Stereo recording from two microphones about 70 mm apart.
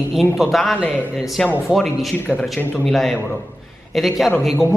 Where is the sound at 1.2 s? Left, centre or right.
Centre.